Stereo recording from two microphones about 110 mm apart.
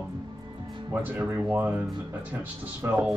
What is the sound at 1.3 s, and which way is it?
Speech, 15° right (ahead or behind).